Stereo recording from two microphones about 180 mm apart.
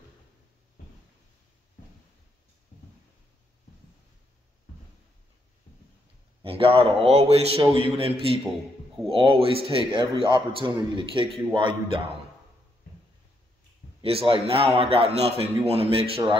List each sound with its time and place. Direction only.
6.4 s a man's voice: 30° right (ahead or behind)
14.0 s a man's voice: 30° right (ahead or behind)